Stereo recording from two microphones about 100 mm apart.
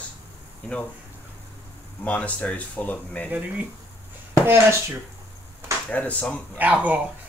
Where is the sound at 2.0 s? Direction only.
15° left (ahead or behind).